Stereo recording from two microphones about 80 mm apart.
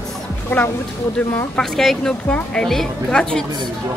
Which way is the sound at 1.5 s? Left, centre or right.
Centre.